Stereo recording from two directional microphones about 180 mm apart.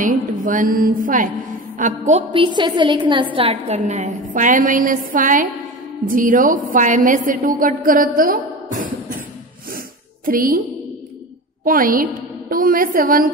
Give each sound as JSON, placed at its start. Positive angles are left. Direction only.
{"t": 0.0, "sound": "a woman's voice", "side_deg": -45}
{"t": 2.3, "sound": "a woman's voice", "side_deg": -25}
{"t": 10.2, "sound": "a woman's voice", "side_deg": -50}
{"t": 11.6, "sound": "a woman's voice", "side_deg": -50}